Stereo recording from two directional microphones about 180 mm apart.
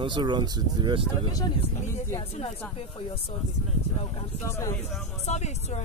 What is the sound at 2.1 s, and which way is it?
Speech, 35° left (ahead or behind).